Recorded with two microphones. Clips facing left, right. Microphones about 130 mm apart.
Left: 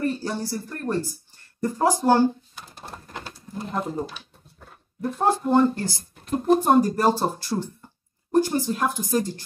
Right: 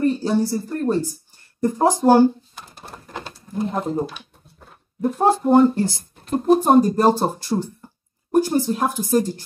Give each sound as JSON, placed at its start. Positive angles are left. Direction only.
{"t": 0.0, "sound": "speech", "side_deg": -20}
{"t": 3.5, "sound": "speech", "side_deg": -20}
{"t": 5.0, "sound": "speech", "side_deg": -20}
{"t": 7.8, "sound": "a sound", "side_deg": -15}
{"t": 9.0, "sound": "speech", "side_deg": -15}